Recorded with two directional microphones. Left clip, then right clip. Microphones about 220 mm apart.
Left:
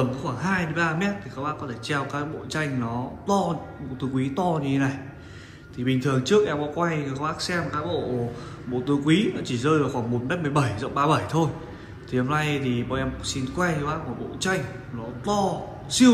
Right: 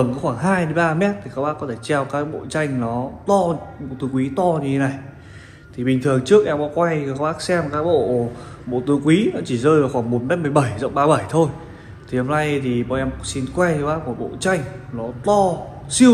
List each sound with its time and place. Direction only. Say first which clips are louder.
0.0 s a man's voice: right 7 dB; 5° left (ahead or behind)